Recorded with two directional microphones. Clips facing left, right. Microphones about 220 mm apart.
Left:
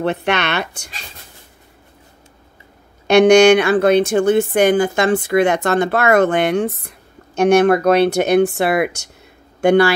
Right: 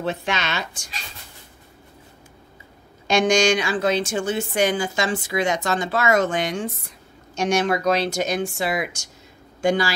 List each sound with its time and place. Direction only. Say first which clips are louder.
0.0 s a woman's voice: left 7 dB; 65° left (ahead or behind)
3.1 s a woman's voice: left 10 dB; 65° left (ahead or behind)